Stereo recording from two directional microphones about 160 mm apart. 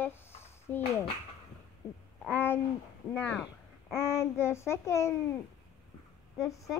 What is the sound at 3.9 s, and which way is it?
Child singing, 15° left (ahead or behind).